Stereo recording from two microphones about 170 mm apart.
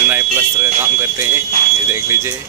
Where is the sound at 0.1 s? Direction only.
15° right (ahead or behind).